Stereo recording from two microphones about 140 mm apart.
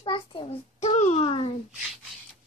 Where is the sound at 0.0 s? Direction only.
35° left (ahead or behind); by 1.2 s 55° left (ahead or behind).